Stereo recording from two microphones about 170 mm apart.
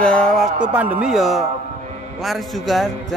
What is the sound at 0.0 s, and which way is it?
Speech, 5° left (ahead or behind).